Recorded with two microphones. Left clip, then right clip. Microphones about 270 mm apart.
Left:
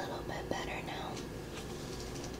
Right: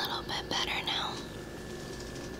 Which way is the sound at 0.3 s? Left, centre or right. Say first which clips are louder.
Right 6 dB; right.